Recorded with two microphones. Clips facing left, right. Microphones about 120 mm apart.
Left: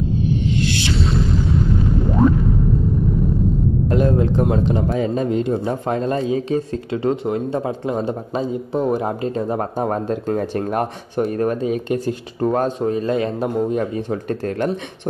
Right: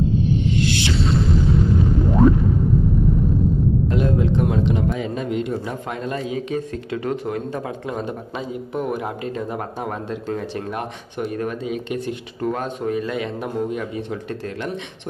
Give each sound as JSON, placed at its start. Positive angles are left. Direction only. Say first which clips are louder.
{"t": 1.0, "sound": "music", "louder": "right 2 dB", "side_deg": 0}
{"t": 3.9, "sound": "speech", "louder": "left 6 dB", "side_deg": 40}